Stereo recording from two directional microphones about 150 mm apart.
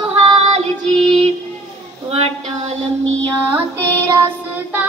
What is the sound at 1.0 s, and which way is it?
Music, 40° right (ahead or behind).